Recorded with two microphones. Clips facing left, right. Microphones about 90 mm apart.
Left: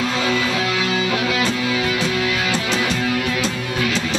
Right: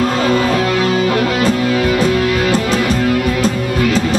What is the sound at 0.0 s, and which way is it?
Music, 45° right (ahead or behind).